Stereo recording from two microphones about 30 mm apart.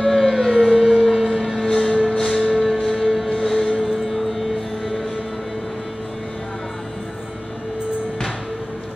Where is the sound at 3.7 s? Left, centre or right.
Centre.